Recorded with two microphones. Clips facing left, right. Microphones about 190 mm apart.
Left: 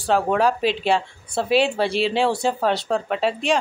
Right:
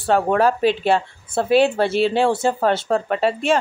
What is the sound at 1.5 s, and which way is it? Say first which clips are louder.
Speech: right 3 dB; 55° right (ahead or behind).